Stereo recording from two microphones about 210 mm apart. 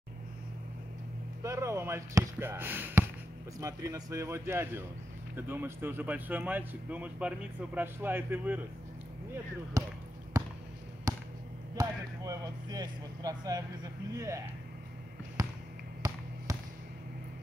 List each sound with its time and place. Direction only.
1.4 s speech: 15° right (ahead or behind)
9.8 s speech: 15° right (ahead or behind)
10.3 s basketball bounce: 15° right (ahead or behind)
11.1 s a sound: 15° right (ahead or behind)
11.7 s speech: 20° right (ahead or behind)
15.4 s basketball bounce: 15° right (ahead or behind)